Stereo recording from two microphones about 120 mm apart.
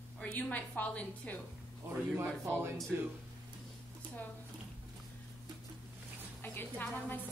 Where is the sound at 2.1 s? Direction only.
20° right (ahead or behind).